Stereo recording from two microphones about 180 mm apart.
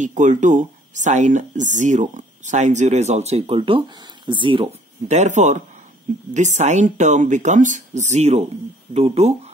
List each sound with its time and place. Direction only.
0.0 s speech: 45° right (ahead or behind)